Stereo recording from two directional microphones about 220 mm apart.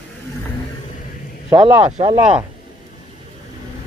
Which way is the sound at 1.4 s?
20° right (ahead or behind).